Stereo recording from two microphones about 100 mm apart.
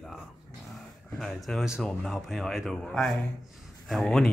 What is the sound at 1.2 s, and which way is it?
Speech, centre (ahead or behind).